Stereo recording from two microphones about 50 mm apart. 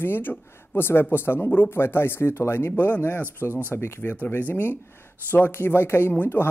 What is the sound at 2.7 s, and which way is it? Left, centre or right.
Speech, left.